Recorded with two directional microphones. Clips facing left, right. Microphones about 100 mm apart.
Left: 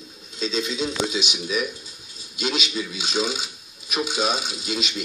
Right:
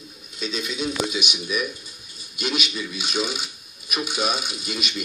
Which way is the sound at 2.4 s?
25° left (ahead or behind).